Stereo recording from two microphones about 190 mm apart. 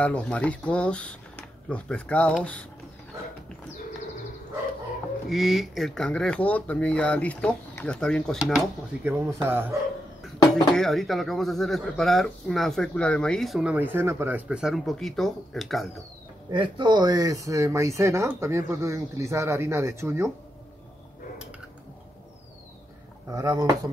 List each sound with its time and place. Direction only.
0.0 s speech: 5° left (ahead or behind)
5.3 s speech: centre (ahead or behind)
10.5 s speech: centre (ahead or behind)
16.4 s speech: 25° right (ahead or behind)
23.2 s speech: 20° right (ahead or behind)